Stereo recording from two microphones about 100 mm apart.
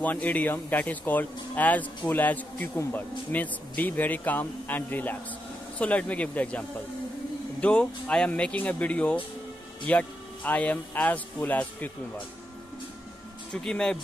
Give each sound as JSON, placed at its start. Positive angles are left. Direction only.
{"t": 0.0, "sound": "speech", "side_deg": 15}
{"t": 7.6, "sound": "speech", "side_deg": 10}
{"t": 13.5, "sound": "speech", "side_deg": 10}